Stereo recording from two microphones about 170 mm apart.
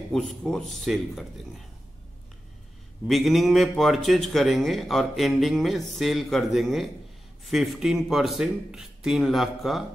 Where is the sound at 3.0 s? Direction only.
Centre (ahead or behind).